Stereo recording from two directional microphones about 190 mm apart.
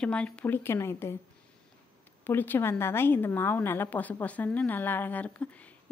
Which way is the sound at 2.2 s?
10° left (ahead or behind).